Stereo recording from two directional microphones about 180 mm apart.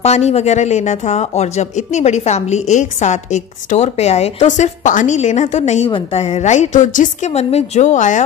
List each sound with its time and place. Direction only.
0.0 s speech: 35° left (ahead or behind)